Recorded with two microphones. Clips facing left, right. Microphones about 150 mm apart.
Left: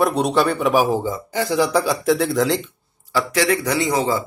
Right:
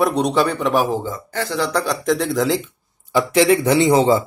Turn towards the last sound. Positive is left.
turn(degrees=-25)  # may be behind; listen again after turning